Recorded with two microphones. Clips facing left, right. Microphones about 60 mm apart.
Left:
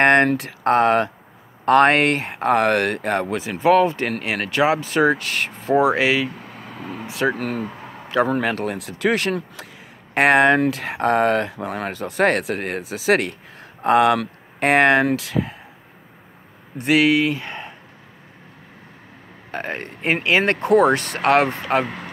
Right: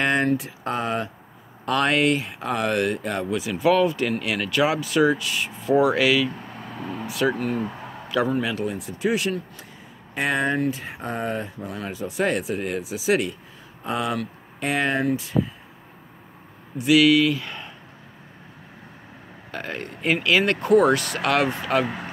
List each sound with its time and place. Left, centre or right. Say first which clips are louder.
0.0 s speech: left 6 dB; left
1.7 s speech: left 6 dB; left
3.4 s speech: left 3 dB; left
5.8 s speech: left 2 dB; left
6.3 s vehicle: even; centre
7.1 s speech: left 2 dB; left
7.3 s speech: even; left
7.6 s a sound: even; centre
8.4 s speech: left 3 dB; left
16.7 s speech: even; left
19.5 s speech: left 4 dB; left
21.8 s speech: right 1 dB; centre